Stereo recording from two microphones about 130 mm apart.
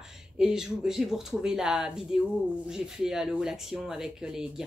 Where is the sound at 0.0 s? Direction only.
5° right (ahead or behind).